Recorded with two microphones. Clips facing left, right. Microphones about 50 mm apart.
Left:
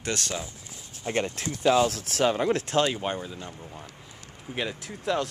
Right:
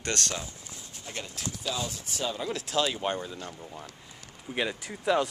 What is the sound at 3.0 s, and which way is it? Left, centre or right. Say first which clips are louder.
Speech: even; centre.